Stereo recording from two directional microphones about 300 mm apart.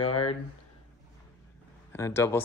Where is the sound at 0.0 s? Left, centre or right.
Left.